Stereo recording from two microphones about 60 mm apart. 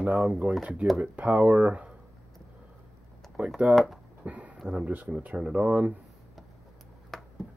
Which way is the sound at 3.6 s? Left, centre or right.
Centre.